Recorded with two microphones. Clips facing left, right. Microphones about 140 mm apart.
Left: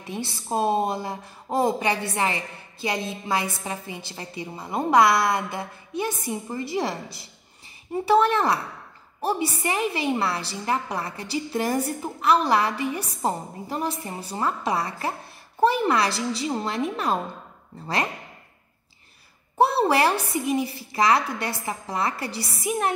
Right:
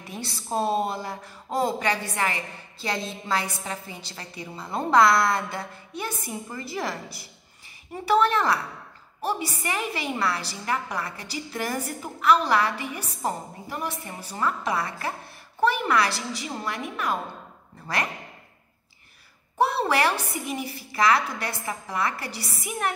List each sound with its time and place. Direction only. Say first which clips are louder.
0.0 s a woman's voice: left 4 dB; 20° left (ahead or behind)
19.9 s a woman's voice: left 3 dB; 25° left (ahead or behind)